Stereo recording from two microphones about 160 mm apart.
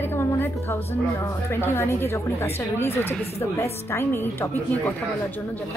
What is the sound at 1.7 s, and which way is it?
A woman's voice, 15° left (ahead or behind).